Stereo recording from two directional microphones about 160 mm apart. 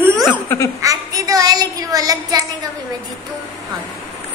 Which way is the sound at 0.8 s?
20° right (ahead or behind).